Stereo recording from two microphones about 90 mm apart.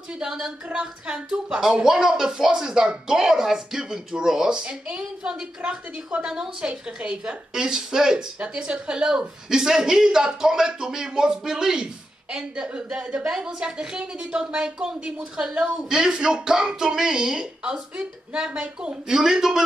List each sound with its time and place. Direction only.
0.2 s speech: 5° right (ahead or behind)